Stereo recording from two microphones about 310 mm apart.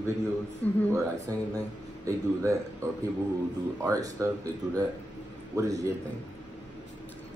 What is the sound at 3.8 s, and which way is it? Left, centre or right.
Speech, centre.